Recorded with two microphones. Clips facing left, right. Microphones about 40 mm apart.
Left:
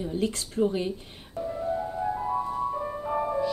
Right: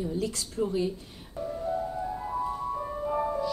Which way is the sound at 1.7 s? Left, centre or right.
Centre.